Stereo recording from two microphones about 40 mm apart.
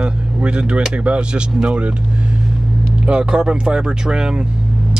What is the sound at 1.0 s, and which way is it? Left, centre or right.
Speech, right.